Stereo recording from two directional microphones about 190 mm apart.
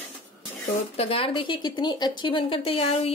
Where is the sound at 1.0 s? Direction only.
30° left (ahead or behind).